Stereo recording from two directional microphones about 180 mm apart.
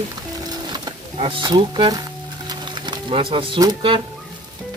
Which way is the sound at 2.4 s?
25° right (ahead or behind).